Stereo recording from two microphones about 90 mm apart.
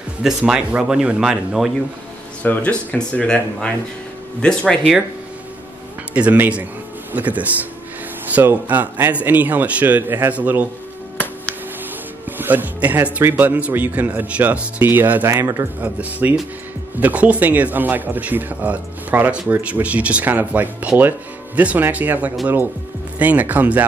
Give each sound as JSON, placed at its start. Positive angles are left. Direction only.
{"t": 0.2, "sound": "speech", "side_deg": -10}
{"t": 2.4, "sound": "speech", "side_deg": 20}
{"t": 6.1, "sound": "speech", "side_deg": -15}
{"t": 12.3, "sound": "speech", "side_deg": -20}
{"t": 16.0, "sound": "speech", "side_deg": -15}